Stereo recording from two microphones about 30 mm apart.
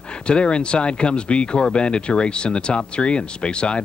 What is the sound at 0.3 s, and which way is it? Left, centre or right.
Speech, left.